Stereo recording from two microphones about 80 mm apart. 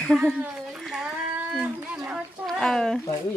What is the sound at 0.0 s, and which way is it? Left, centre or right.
Speech, centre.